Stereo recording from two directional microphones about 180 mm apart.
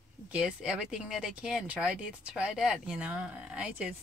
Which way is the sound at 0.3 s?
5° right (ahead or behind).